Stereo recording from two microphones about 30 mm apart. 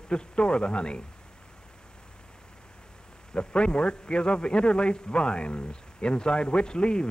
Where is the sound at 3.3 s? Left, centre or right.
Left.